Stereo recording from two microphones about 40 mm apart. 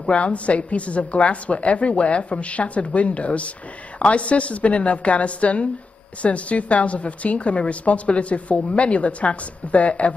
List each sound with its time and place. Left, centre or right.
0.1 s a woman's voice: left